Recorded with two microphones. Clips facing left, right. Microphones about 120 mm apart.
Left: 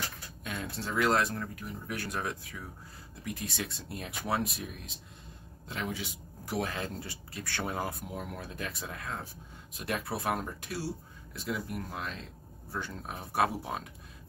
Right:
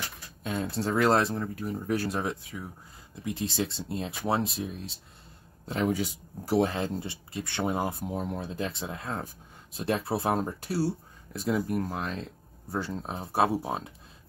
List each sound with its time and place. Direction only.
0.4 s speech: 30° right (ahead or behind)
5.7 s speech: 40° right (ahead or behind)